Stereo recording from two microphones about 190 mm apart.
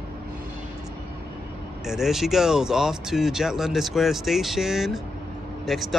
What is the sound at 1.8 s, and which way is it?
Speech, centre (ahead or behind).